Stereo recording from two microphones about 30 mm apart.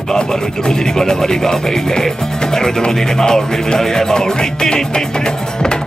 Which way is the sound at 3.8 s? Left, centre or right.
Centre.